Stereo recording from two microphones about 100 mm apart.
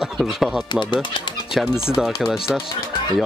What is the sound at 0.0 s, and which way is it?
Speech, centre (ahead or behind).